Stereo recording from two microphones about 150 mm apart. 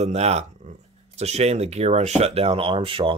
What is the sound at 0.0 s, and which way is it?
Speech, 45° right (ahead or behind).